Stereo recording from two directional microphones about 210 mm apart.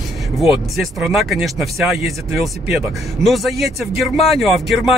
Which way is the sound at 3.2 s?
Centre (ahead or behind).